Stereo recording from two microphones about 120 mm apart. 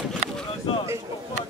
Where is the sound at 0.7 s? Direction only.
45° left (ahead or behind).